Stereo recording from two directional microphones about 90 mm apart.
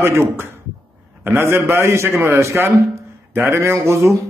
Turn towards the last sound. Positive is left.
turn(degrees=-30)  # may be behind; listen again after turning